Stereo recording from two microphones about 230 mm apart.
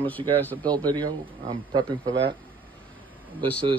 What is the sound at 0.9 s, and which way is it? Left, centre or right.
Speech, centre.